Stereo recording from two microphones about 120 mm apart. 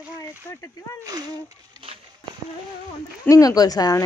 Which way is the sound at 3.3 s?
30° left (ahead or behind).